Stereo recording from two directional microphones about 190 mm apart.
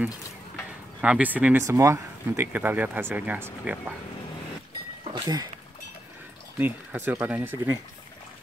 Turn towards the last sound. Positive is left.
turn(degrees=-10)  # may be behind; listen again after turning